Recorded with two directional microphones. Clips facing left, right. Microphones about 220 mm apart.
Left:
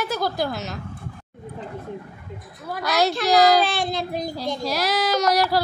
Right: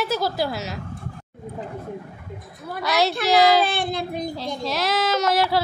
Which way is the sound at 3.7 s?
55° right (ahead or behind).